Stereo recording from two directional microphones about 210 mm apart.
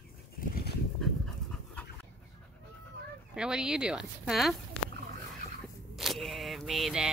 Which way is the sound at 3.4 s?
5° right (ahead or behind).